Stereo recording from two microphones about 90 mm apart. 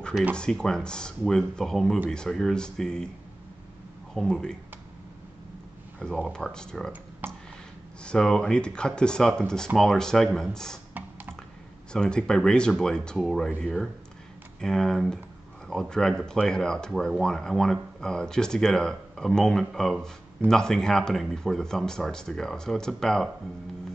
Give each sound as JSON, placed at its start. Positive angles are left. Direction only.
{"t": 0.4, "sound": "speech", "side_deg": 10}
{"t": 4.1, "sound": "speech", "side_deg": 5}
{"t": 6.2, "sound": "speech", "side_deg": 5}
{"t": 7.2, "sound": "a sound", "side_deg": -20}
{"t": 8.0, "sound": "speech", "side_deg": 10}
{"t": 11.0, "sound": "computer keyboard", "side_deg": -20}
{"t": 11.9, "sound": "speech", "side_deg": 10}